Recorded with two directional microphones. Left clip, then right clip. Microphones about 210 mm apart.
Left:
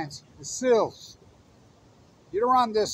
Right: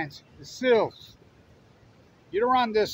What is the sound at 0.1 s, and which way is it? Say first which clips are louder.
Speech: left 6 dB; 40° right (ahead or behind).